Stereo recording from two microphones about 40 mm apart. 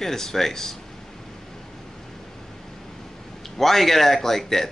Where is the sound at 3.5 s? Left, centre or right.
Centre.